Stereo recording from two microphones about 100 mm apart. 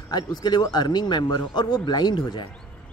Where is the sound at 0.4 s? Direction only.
45° left (ahead or behind).